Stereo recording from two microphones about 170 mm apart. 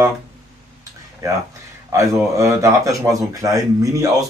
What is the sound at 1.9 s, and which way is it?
Speech, 15° right (ahead or behind).